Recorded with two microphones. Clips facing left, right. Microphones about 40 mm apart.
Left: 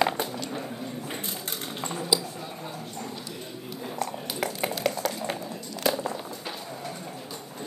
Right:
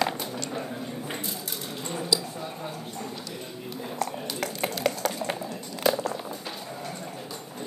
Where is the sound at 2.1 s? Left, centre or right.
Centre.